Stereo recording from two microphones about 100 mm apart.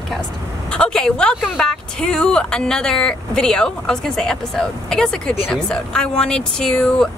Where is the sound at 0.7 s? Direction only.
5° left (ahead or behind).